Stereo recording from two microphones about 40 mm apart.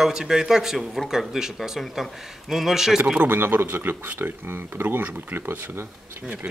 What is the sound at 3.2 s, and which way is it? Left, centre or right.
Speech, right.